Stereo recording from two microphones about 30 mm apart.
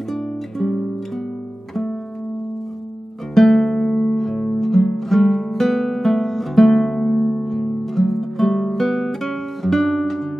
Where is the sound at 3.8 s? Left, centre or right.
Left.